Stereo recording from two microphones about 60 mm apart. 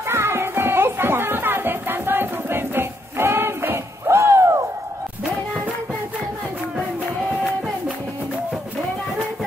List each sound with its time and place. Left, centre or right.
0.1 s music: right